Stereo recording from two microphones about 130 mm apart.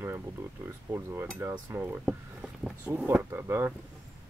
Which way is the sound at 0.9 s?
20° right (ahead or behind).